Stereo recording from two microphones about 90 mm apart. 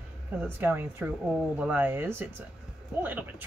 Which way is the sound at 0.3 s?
20° right (ahead or behind).